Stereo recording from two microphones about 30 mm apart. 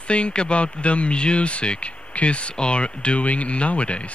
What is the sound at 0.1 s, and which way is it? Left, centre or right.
Speech, left.